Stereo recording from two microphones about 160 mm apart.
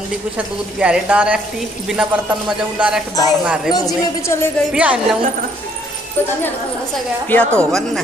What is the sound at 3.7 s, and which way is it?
Speech, 25° left (ahead or behind).